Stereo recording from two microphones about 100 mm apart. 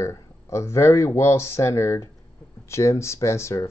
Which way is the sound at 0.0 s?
30° left (ahead or behind).